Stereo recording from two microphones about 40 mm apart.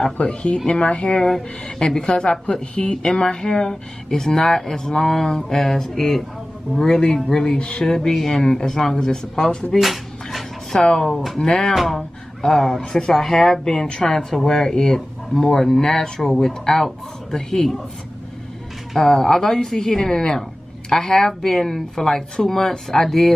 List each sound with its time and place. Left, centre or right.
0.2 s speech: left; by 9.2 s centre
9.8 s a sound: centre
10.7 s speech: centre
11.7 s speech: centre
18.9 s speech: centre